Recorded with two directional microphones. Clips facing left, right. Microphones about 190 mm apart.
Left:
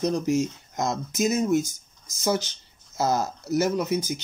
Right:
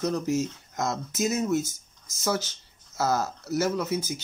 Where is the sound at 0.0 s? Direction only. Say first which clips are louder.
Left 3 dB; 15° left (ahead or behind).